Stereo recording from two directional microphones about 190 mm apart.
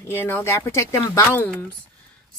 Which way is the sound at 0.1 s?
10° left (ahead or behind).